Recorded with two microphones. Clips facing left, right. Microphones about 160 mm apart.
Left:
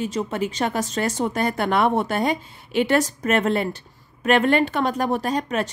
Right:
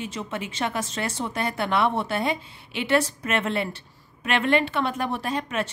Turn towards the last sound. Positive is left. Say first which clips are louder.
# left 4 dB
turn(degrees=40)  # may be behind; listen again after turning